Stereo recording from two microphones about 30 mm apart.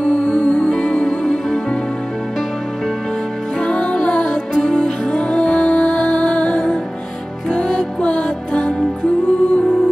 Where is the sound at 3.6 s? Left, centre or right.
Left.